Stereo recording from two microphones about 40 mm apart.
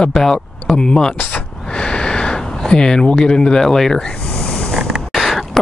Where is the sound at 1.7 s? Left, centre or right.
Left.